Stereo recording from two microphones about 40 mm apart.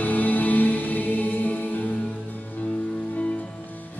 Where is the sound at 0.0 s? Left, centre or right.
Left.